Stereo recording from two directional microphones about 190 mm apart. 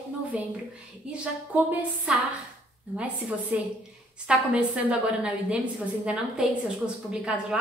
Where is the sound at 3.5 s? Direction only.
10° right (ahead or behind).